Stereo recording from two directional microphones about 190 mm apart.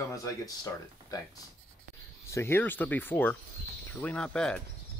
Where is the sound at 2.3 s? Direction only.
10° left (ahead or behind).